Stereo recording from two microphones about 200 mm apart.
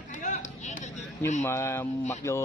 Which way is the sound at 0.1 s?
40° left (ahead or behind).